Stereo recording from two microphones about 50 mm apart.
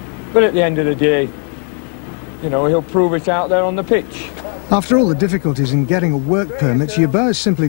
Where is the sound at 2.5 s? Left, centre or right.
Left.